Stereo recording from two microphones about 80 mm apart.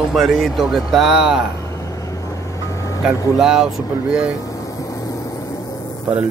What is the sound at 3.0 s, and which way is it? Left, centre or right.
Speech, centre.